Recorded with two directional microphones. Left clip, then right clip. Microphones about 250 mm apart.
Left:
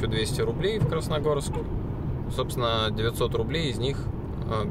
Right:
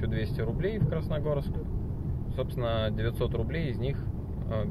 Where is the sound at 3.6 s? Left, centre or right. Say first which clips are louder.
Left 6 dB; left.